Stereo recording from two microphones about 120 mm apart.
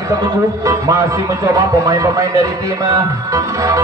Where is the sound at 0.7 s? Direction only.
25° right (ahead or behind).